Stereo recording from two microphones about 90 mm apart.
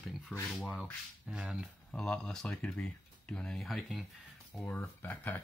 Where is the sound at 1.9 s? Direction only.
10° left (ahead or behind).